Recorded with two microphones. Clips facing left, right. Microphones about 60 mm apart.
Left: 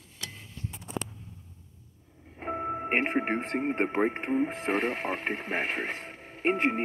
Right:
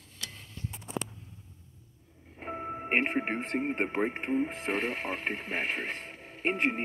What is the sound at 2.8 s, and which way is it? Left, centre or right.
Speech, centre.